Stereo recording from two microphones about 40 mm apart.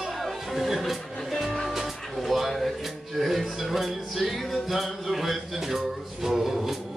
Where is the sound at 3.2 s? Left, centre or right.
Centre.